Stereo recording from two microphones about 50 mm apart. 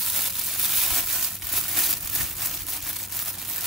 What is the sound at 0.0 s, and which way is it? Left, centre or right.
Crumpling, centre.